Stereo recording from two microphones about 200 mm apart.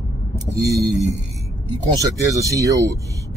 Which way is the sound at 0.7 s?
15° right (ahead or behind).